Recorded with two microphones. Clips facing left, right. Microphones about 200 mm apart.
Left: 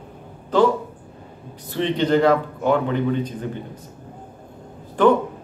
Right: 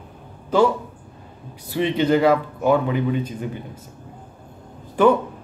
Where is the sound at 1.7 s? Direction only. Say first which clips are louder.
Right 1 dB; 10° right (ahead or behind).